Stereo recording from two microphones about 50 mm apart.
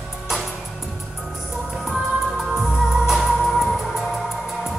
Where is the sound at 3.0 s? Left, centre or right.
Centre.